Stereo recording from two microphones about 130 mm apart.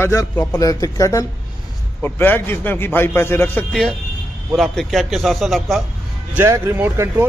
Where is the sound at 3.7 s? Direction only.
5° left (ahead or behind).